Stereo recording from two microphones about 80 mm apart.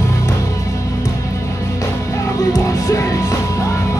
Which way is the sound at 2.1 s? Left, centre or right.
Left.